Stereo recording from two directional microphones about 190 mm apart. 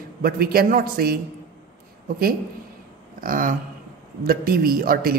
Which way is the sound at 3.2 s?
45° right (ahead or behind).